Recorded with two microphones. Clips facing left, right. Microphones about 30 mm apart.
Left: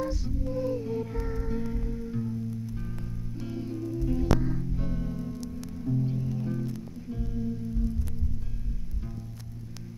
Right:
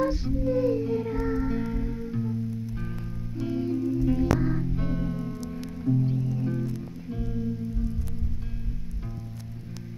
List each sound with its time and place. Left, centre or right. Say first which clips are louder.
0.0 s music: right 6 dB; right
5.4 s music: right 3 dB; right
5.8 s music: right 4 dB; centre